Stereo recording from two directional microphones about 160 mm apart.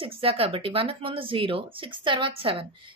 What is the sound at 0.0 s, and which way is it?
A woman's voice, 35° right (ahead or behind).